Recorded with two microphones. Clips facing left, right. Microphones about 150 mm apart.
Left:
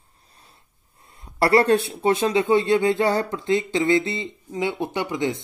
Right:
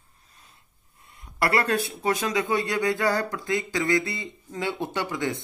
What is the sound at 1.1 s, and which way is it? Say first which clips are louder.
Speech: left 7 dB; 30° left (ahead or behind).